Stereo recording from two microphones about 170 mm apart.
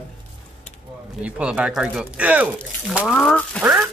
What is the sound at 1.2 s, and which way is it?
Speech, 10° right (ahead or behind).